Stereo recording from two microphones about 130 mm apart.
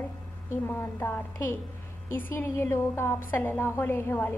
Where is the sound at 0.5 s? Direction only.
20° left (ahead or behind).